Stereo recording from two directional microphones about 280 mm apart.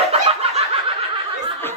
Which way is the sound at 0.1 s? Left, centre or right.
Right.